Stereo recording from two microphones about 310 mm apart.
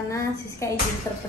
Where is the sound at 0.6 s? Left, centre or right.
Centre.